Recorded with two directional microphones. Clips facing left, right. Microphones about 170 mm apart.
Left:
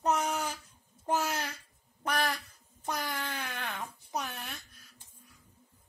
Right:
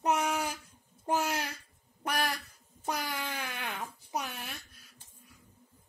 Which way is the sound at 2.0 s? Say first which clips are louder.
Left 1 dB; 10° right (ahead or behind).